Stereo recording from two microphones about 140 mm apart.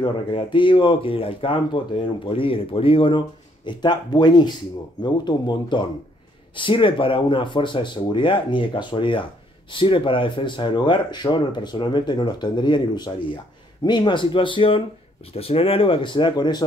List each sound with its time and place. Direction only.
0.0 s speech: 35° left (ahead or behind)